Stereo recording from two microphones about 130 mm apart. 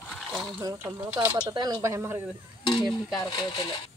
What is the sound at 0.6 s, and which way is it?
Speech, 25° right (ahead or behind).